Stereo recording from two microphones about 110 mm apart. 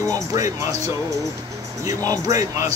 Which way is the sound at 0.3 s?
30° right (ahead or behind).